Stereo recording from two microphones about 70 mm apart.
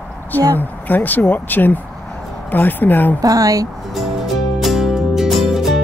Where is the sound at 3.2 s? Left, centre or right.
Right.